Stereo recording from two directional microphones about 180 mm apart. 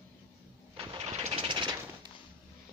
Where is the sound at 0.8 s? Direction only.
35° right (ahead or behind).